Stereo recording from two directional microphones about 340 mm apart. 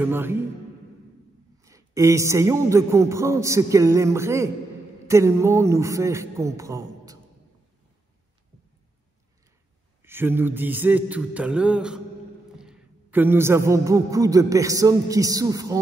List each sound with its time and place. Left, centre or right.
0.0 s a man's voice: centre
1.6 s a man's voice: centre
10.0 s a man's voice: centre